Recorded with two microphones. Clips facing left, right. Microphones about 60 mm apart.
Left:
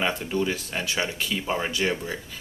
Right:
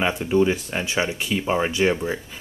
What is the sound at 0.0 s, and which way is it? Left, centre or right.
Speech, centre.